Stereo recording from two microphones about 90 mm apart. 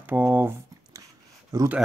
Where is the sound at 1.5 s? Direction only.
40° right (ahead or behind).